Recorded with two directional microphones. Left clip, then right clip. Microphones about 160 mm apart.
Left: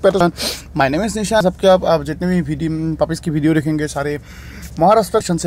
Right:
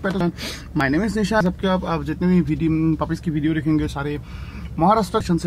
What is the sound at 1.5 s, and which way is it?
Speech, 40° left (ahead or behind).